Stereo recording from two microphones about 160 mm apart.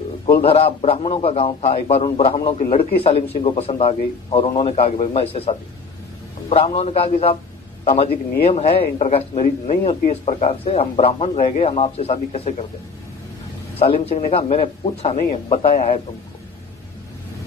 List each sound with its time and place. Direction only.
0.4 s a man's voice: 35° left (ahead or behind)
13.7 s a man's voice: 35° left (ahead or behind)